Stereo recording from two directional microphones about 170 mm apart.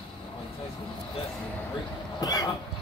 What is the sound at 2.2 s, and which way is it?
Cough, 20° left (ahead or behind).